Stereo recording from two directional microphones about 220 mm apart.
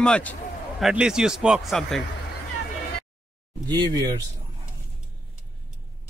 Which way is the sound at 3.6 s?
20° right (ahead or behind).